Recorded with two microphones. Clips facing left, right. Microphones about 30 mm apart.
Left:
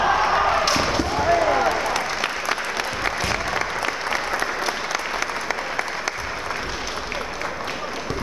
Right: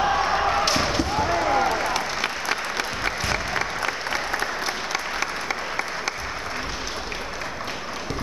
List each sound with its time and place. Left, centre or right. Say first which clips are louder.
0.0 s basketball bounce: left 3 dB; centre
2.2 s applause: left 2 dB; centre